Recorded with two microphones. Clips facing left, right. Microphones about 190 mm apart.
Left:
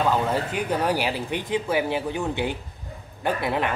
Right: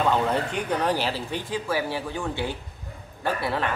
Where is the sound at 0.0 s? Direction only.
5° left (ahead or behind).